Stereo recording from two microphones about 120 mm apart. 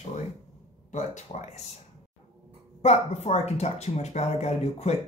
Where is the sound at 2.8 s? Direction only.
65° left (ahead or behind).